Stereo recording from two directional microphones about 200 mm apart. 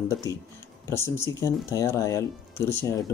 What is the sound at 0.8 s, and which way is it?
Speech, 15° left (ahead or behind).